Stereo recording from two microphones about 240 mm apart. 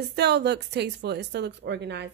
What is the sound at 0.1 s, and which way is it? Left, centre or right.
A woman's voice, right.